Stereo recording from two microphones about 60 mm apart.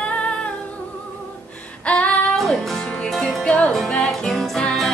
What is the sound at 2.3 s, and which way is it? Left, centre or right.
Music, centre.